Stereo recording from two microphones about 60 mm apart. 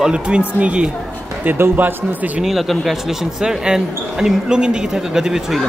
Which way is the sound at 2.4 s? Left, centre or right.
Centre.